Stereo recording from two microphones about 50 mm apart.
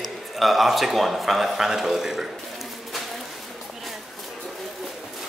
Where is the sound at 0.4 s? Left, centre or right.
Centre.